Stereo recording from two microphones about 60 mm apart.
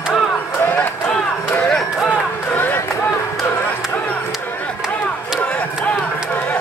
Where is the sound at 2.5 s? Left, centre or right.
Left.